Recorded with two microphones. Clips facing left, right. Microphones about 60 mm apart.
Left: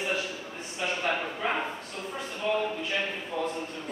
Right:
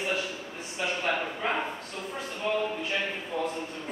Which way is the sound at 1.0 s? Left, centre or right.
Centre.